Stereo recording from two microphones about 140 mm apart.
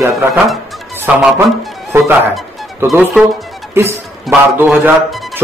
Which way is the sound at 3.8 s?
15° right (ahead or behind).